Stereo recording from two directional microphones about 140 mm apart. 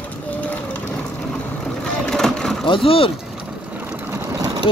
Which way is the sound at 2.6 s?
40° left (ahead or behind).